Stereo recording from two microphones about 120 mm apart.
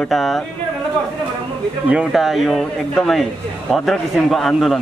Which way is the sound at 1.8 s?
5° right (ahead or behind).